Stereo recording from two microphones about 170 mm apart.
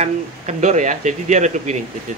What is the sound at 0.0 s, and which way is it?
Speech, 45° right (ahead or behind).